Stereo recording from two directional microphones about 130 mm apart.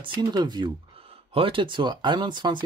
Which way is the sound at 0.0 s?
35° right (ahead or behind).